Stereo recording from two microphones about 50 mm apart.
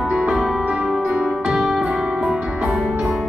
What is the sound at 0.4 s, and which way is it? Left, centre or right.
Music, centre.